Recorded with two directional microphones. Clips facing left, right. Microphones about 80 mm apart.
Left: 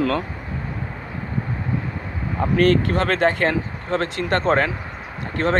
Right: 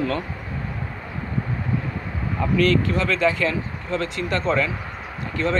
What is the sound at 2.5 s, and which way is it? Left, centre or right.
Speech, left.